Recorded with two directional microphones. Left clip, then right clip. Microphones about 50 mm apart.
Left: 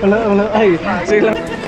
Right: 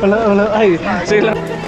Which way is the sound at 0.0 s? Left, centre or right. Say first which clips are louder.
Right 1 dB; right.